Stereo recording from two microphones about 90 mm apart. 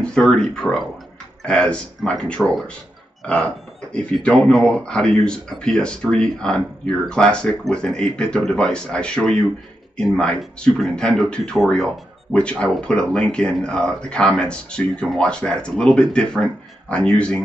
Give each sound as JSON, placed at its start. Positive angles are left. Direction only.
{"t": 0.0, "sound": "speech", "side_deg": 10}